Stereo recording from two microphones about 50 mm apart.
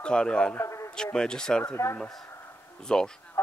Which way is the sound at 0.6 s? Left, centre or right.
Left.